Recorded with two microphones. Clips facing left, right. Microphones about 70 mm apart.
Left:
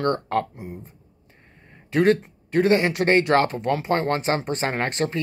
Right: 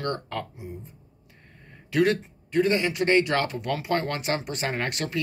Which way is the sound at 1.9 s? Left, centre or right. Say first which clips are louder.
Left 4 dB; left.